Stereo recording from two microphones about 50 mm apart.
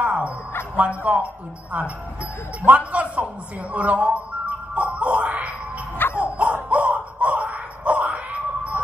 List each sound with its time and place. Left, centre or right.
0.0 s a sound: right
0.7 s speech: right
2.9 s speech: right
3.7 s music: right
5.9 s music: left
6.2 s a sound: right